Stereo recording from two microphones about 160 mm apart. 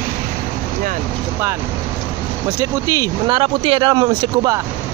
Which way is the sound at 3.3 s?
30° right (ahead or behind).